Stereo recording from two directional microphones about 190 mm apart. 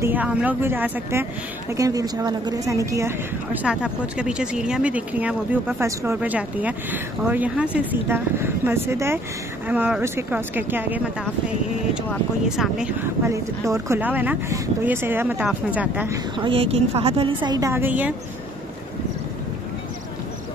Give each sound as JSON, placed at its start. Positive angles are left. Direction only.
{"t": 0.0, "sound": "speech", "side_deg": -10}
{"t": 3.6, "sound": "speech", "side_deg": -5}
{"t": 12.1, "sound": "speech", "side_deg": 0}
{"t": 13.3, "sound": "speech", "side_deg": -15}
{"t": 16.3, "sound": "a woman's voice", "side_deg": -30}